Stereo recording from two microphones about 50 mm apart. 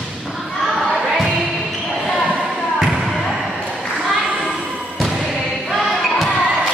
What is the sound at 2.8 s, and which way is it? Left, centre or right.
Basketball bounce, centre.